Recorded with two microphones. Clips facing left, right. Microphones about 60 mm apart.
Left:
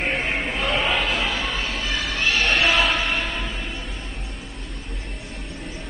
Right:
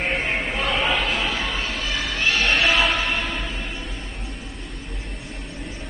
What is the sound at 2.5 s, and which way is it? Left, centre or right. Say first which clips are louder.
Music: even; left.